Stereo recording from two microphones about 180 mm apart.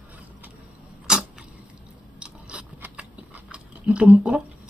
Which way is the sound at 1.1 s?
5° right (ahead or behind).